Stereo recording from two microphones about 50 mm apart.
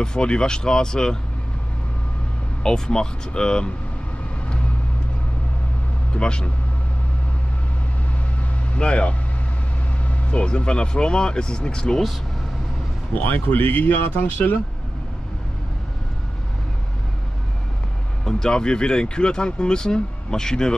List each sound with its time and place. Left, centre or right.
0.0 s speech: centre
2.6 s speech: centre
6.1 s speech: centre
8.7 s speech: left
13.1 s speech: left
18.2 s speech: centre